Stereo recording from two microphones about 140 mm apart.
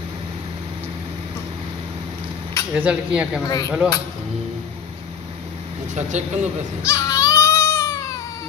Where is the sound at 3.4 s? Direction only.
25° left (ahead or behind).